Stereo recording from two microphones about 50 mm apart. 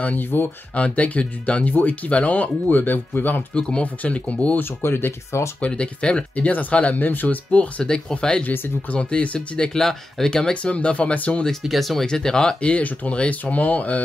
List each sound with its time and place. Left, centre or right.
0.0 s speech: left
0.7 s speech: left
3.5 s speech: centre
3.8 s speech: left
4.6 s speech: left
5.6 s speech: left
7.8 s speech: centre
9.8 s speech: centre; by 11.4 s left
11.6 s speech: centre
12.7 s speech: left